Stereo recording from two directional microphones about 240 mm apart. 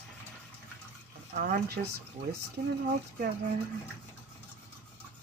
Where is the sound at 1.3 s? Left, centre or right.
Right.